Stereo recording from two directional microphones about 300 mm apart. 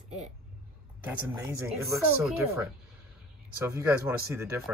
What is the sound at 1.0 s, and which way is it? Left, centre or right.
Speech, centre.